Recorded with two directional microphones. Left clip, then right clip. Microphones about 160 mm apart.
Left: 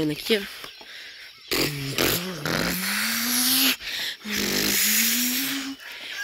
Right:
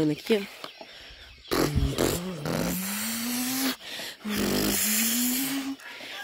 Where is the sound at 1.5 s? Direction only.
20° right (ahead or behind).